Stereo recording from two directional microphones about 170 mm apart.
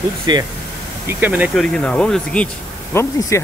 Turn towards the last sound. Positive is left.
turn(degrees=20)  # may be behind; listen again after turning